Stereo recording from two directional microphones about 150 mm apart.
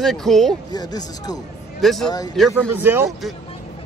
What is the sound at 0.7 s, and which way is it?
Speech, 25° left (ahead or behind).